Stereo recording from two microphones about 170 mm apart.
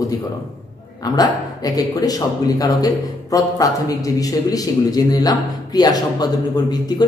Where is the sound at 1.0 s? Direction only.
20° left (ahead or behind).